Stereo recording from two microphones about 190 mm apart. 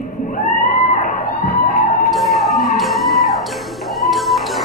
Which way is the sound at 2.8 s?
Centre (ahead or behind).